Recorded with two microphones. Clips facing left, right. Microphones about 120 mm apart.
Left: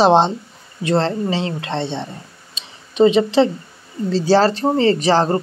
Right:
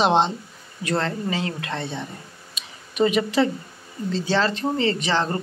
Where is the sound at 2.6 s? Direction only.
25° left (ahead or behind).